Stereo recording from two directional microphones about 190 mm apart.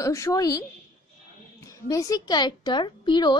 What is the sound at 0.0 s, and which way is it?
Speech, 15° left (ahead or behind).